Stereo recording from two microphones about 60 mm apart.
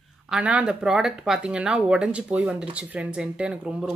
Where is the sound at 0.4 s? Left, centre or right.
Right.